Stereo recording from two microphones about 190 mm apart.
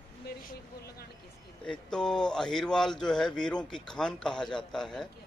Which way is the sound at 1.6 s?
5° left (ahead or behind).